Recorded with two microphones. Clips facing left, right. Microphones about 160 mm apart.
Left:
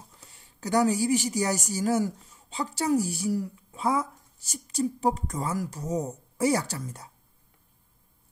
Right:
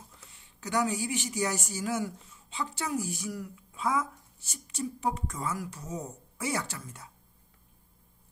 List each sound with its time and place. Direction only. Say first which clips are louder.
0.3 s a woman's voice: left 6 dB; 40° left (ahead or behind)